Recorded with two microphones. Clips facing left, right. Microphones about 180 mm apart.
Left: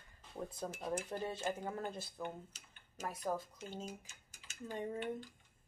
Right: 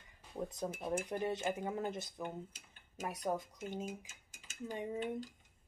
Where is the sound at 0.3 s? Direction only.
15° right (ahead or behind).